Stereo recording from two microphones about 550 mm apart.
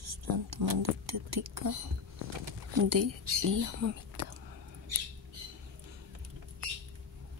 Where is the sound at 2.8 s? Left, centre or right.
Right.